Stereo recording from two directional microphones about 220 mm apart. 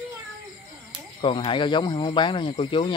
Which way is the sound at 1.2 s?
25° left (ahead or behind).